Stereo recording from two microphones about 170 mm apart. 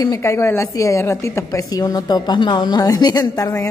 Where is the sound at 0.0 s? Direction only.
20° left (ahead or behind).